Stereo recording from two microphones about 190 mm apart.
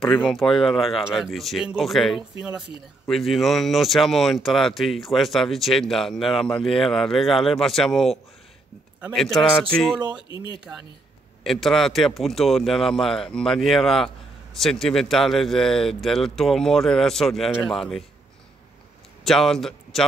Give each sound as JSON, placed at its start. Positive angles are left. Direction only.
{"t": 0.0, "sound": "speech", "side_deg": 5}
{"t": 10.0, "sound": "speech", "side_deg": -25}
{"t": 11.4, "sound": "speech", "side_deg": 0}
{"t": 19.2, "sound": "a man's voice", "side_deg": 0}